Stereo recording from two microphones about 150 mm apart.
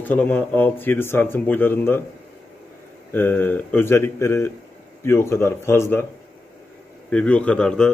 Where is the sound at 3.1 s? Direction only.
10° left (ahead or behind).